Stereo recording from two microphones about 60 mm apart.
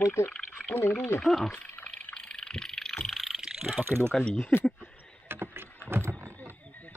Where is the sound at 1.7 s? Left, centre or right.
Left.